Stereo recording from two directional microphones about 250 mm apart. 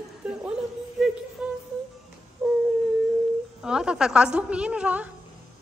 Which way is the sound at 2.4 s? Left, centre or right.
Centre.